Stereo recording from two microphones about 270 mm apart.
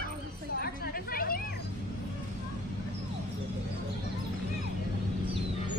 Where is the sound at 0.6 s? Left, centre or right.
Left.